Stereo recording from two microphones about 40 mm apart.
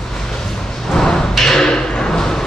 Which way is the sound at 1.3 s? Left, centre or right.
Centre.